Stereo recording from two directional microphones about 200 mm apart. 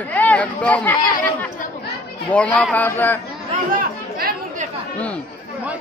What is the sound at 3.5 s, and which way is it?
Chatter, 45° right (ahead or behind).